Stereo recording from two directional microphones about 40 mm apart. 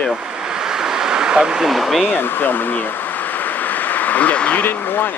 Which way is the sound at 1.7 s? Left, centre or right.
Centre.